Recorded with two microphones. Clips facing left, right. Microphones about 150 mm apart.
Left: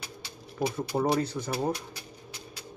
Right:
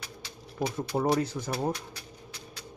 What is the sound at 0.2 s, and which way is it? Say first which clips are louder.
Speech: left 2 dB; 5° left (ahead or behind).